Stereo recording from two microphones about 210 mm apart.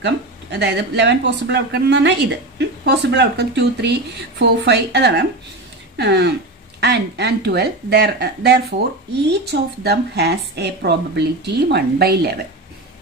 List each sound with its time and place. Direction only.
0.0 s a woman's voice: 55° right (ahead or behind)